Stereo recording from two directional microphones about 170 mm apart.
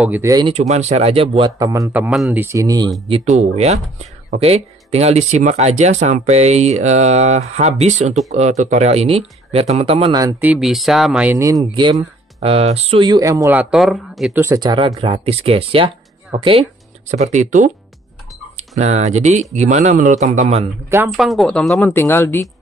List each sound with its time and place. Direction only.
0.0 s a man's voice: 15° right (ahead or behind)
0.5 s speech: 40° right (ahead or behind)
1.7 s a man's voice: 15° right (ahead or behind)
2.4 s speech: 20° right (ahead or behind)
3.1 s speech: 40° right (ahead or behind)
10.2 s speech: 10° right (ahead or behind)
11.3 s speech: 20° right (ahead or behind); by 14.4 s centre (ahead or behind)
14.4 s speech: 20° right (ahead or behind)
17.1 s speech: 45° right (ahead or behind)
21.1 s speech: centre (ahead or behind)